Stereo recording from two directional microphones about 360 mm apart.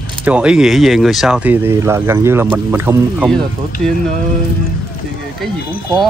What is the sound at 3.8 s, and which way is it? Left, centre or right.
Speech, right.